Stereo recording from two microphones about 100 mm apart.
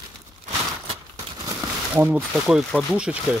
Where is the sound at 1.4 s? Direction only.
35° right (ahead or behind).